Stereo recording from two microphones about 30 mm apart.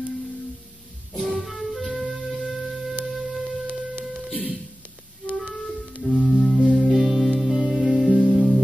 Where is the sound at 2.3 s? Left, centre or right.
Centre.